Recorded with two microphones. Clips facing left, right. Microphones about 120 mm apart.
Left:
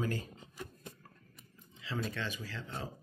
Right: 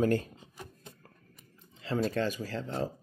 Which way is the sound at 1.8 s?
45° right (ahead or behind).